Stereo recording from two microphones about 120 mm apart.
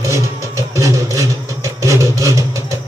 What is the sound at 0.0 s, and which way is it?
Vehicle, 25° right (ahead or behind).